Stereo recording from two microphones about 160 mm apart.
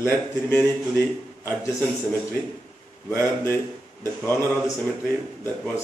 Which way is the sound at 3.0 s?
15° left (ahead or behind).